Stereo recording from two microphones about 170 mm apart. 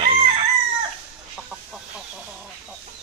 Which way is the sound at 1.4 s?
5° right (ahead or behind).